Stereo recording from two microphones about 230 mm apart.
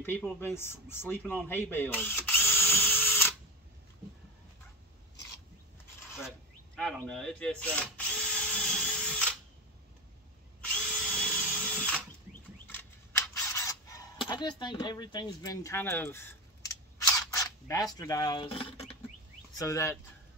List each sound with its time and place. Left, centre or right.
0.0 s speech: centre
6.2 s mechanisms: centre
11.1 s drill: centre
12.6 s a sound: centre
19.6 s speech: centre